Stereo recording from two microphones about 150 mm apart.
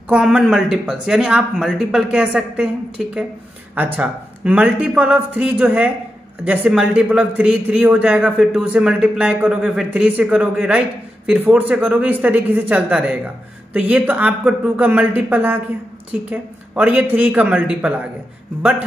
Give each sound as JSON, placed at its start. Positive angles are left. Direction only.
{"t": 0.1, "sound": "speech", "side_deg": -5}